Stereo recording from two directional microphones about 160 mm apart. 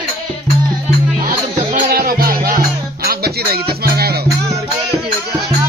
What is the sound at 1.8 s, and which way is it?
Music, 75° right (ahead or behind).